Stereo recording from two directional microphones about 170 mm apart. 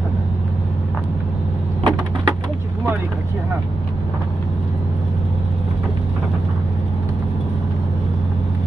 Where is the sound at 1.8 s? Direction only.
25° right (ahead or behind).